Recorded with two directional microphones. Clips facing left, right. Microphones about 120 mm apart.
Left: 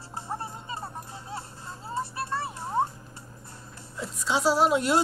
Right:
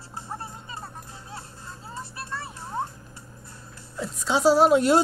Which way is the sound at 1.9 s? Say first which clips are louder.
Left 6 dB; 30° left (ahead or behind).